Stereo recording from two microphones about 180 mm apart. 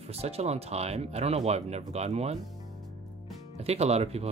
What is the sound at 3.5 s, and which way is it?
Speech, 35° right (ahead or behind).